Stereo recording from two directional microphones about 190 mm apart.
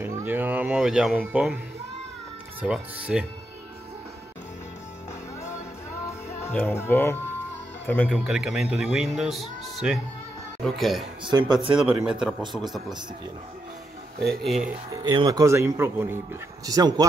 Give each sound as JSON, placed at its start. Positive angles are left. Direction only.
{"t": 0.0, "sound": "speech", "side_deg": -10}
{"t": 2.6, "sound": "speech", "side_deg": -5}
{"t": 6.4, "sound": "speech", "side_deg": 10}
{"t": 8.2, "sound": "speech", "side_deg": -5}
{"t": 11.2, "sound": "speech", "side_deg": -20}
{"t": 11.8, "sound": "speech", "side_deg": -5}
{"t": 14.2, "sound": "speech", "side_deg": 0}
{"t": 15.0, "sound": "speech", "side_deg": -25}